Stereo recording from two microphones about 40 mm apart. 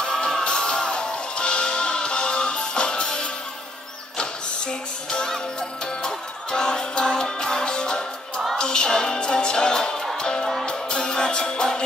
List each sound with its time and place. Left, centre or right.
0.0 s music: centre
5.1 s music: centre